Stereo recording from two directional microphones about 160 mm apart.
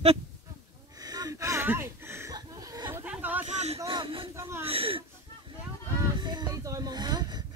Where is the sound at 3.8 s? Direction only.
30° right (ahead or behind).